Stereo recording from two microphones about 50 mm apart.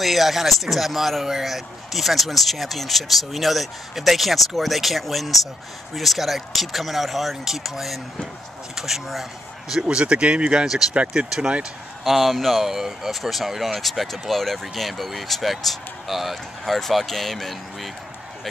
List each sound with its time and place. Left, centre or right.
0.0 s speech: centre
12.0 s speech: centre